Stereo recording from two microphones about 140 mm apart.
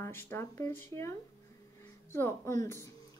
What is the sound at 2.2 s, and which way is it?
Speech, 20° left (ahead or behind).